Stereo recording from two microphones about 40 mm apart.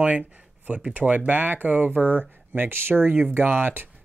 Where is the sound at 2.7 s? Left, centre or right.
Right.